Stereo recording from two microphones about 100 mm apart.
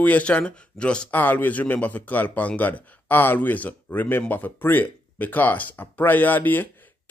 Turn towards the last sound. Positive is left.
turn(degrees=20)  # may be behind; listen again after turning